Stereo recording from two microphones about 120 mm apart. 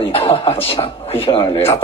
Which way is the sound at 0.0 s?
50° left (ahead or behind).